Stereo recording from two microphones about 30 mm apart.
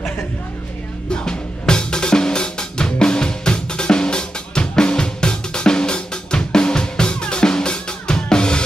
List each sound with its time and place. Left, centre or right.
1.1 s drum: left